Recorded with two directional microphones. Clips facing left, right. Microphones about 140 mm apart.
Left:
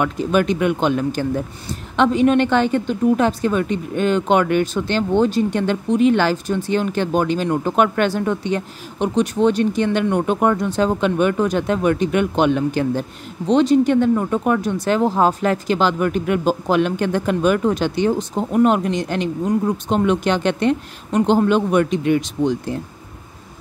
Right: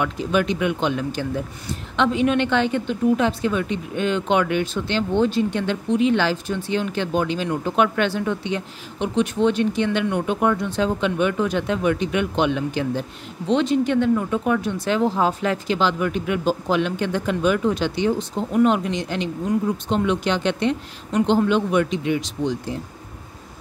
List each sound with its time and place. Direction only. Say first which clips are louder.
0.0 s a woman's voice: left 3 dB; 50° left (ahead or behind)